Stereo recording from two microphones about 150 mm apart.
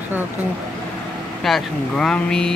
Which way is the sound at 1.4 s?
Centre (ahead or behind).